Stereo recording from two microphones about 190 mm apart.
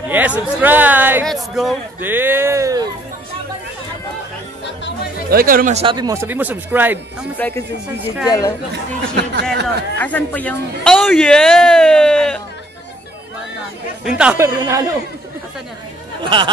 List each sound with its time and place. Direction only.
0.1 s speech: 10° right (ahead or behind)
5.3 s speech: 50° right (ahead or behind)
5.8 s speech: 25° right (ahead or behind)
7.3 s speech: 10° left (ahead or behind)
9.1 s speech: 60° right (ahead or behind)
9.9 s a man's voice: 10° left (ahead or behind)
14.0 s speech: 5° right (ahead or behind)
16.3 s speech: 25° right (ahead or behind)